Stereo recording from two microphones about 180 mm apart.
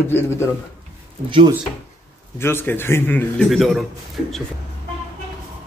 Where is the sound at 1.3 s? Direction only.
30° right (ahead or behind).